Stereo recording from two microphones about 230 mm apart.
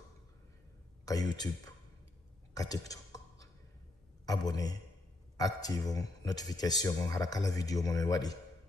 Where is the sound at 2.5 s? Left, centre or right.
Centre.